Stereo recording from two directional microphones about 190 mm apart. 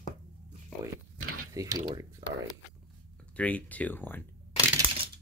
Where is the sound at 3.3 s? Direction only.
5° left (ahead or behind).